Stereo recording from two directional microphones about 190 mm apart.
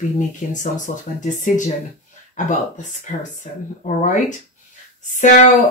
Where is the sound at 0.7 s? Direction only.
40° left (ahead or behind).